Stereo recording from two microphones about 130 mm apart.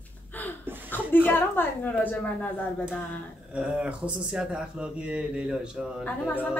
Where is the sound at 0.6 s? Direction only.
15° right (ahead or behind).